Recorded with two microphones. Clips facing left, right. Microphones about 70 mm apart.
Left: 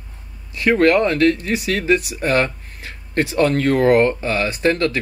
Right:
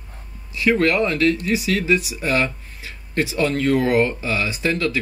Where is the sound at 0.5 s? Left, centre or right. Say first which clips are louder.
Left 4 dB; left.